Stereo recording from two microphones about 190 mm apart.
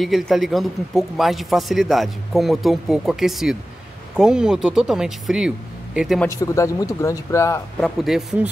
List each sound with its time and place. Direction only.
0.0 s a man's voice: centre (ahead or behind)
6.2 s speech: 15° left (ahead or behind)
7.8 s a man's voice: centre (ahead or behind)